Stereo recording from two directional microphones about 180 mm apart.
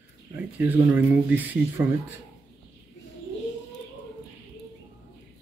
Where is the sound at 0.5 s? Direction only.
10° right (ahead or behind).